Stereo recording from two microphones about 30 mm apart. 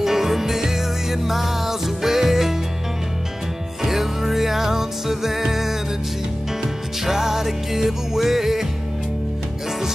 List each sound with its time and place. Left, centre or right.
0.0 s music: centre
3.8 s music: centre